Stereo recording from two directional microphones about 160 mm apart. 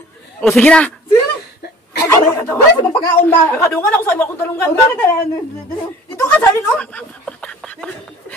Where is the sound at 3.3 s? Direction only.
15° left (ahead or behind).